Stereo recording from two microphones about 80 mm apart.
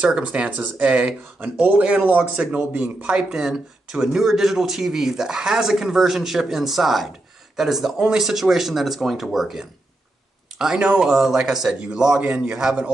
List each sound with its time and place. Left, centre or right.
0.0 s speech: centre